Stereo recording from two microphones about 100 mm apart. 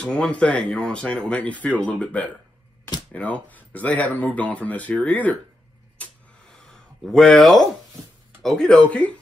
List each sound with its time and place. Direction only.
0.0 s speech: 10° left (ahead or behind)
7.1 s speech: 5° left (ahead or behind)